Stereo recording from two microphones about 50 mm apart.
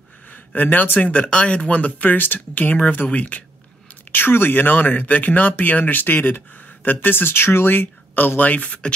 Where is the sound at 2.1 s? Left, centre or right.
Left.